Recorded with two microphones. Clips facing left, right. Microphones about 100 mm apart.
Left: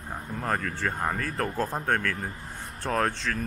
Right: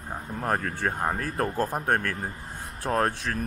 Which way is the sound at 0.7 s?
20° right (ahead or behind).